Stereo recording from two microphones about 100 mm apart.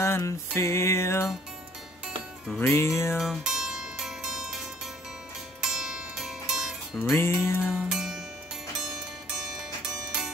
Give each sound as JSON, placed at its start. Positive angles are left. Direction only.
{"t": 0.0, "sound": "music", "side_deg": 25}
{"t": 2.6, "sound": "music", "side_deg": 25}
{"t": 3.2, "sound": "music", "side_deg": -5}
{"t": 5.6, "sound": "music", "side_deg": -5}
{"t": 7.0, "sound": "music", "side_deg": 25}
{"t": 7.7, "sound": "music", "side_deg": -5}
{"t": 8.7, "sound": "zither", "side_deg": -5}